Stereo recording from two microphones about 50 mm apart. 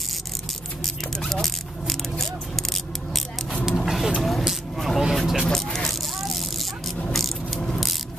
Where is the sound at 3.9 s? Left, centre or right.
Centre.